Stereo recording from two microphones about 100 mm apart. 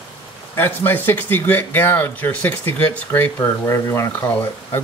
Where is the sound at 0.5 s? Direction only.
20° left (ahead or behind).